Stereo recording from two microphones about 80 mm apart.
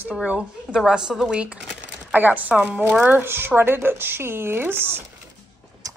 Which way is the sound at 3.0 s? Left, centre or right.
Right.